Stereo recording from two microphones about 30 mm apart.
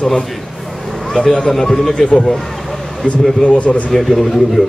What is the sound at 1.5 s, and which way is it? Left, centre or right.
Speech, centre.